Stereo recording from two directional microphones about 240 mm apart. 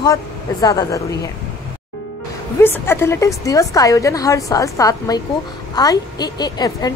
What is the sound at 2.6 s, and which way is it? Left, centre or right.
A woman's voice, centre.